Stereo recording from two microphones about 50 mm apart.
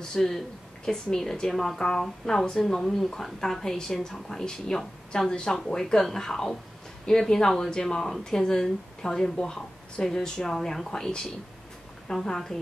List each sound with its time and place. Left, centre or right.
0.1 s speech: centre